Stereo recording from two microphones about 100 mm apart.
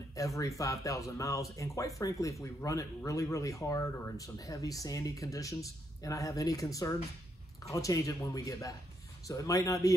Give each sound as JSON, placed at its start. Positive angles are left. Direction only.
{"t": 0.1, "sound": "speech", "side_deg": 35}